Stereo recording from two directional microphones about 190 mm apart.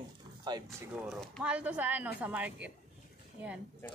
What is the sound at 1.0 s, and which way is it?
A woman's voice, centre (ahead or behind).